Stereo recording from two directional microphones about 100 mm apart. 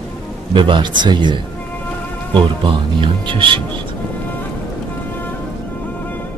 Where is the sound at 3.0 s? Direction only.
55° right (ahead or behind).